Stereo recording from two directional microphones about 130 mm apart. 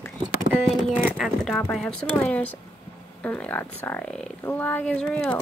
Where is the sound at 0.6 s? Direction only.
Centre (ahead or behind).